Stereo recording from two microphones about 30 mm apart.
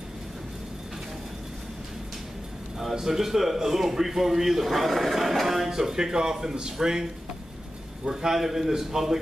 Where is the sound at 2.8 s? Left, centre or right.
Centre.